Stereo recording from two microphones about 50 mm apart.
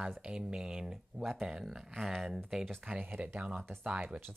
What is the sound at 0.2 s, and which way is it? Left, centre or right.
Speech, centre.